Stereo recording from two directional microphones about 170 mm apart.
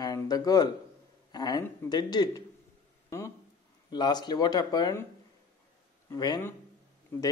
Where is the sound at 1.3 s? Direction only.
25° left (ahead or behind).